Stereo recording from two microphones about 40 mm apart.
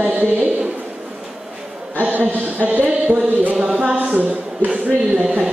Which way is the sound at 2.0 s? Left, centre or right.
Right.